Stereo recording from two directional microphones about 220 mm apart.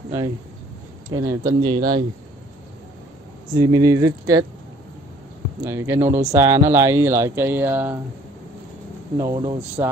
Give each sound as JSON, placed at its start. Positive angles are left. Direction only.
{"t": 1.1, "sound": "speech", "side_deg": -15}
{"t": 3.5, "sound": "speech", "side_deg": -15}
{"t": 5.6, "sound": "speech", "side_deg": -10}
{"t": 9.1, "sound": "speech", "side_deg": -20}